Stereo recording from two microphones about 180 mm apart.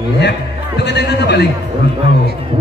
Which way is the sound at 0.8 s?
70° left (ahead or behind).